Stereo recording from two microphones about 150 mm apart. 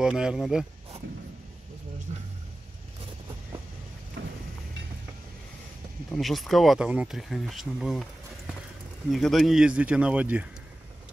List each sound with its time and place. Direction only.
0.0 s speech: 5° right (ahead or behind)
2.1 s vehicle: 50° right (ahead or behind)
6.1 s speech: centre (ahead or behind)
9.1 s speech: centre (ahead or behind)